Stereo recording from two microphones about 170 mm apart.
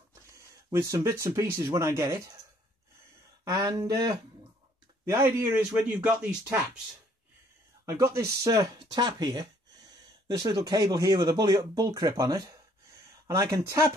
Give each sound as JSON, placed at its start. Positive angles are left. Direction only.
{"t": 0.3, "sound": "speech", "side_deg": -20}
{"t": 3.4, "sound": "speech", "side_deg": -20}
{"t": 5.5, "sound": "speech", "side_deg": -5}
{"t": 7.8, "sound": "speech", "side_deg": -15}